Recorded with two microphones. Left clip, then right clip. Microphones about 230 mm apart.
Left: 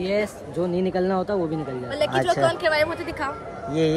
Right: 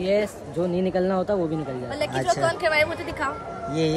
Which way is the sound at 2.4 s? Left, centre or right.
Centre.